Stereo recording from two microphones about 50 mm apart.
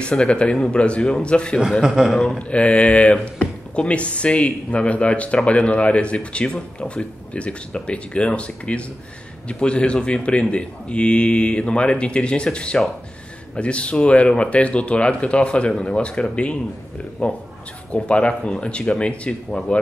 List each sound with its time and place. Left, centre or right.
0.0 s speech: left
1.6 s a man's voice: centre
2.3 s speech: left